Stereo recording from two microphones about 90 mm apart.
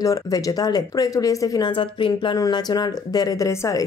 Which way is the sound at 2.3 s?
45° left (ahead or behind).